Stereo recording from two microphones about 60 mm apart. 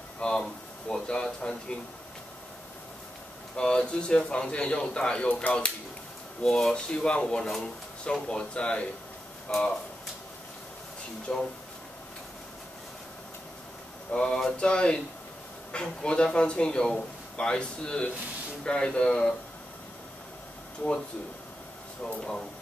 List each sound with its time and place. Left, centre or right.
0.2 s a man's voice: centre
3.5 s a man's voice: centre
6.4 s a man's voice: centre
11.3 s a man's voice: centre
14.1 s a man's voice: centre
22.0 s a man's voice: centre